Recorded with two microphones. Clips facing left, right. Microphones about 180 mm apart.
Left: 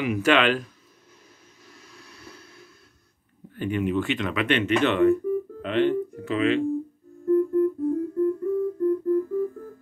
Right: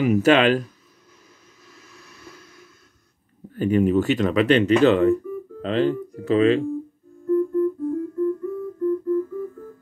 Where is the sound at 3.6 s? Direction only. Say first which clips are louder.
Right 6 dB; 40° right (ahead or behind).